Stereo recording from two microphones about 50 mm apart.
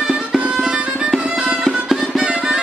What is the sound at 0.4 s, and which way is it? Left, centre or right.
Music, centre.